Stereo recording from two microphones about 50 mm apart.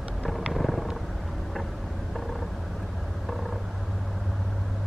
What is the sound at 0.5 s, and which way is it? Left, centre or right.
Purr, centre.